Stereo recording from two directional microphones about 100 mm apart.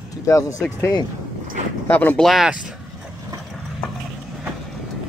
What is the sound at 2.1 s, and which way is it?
Speech, centre (ahead or behind).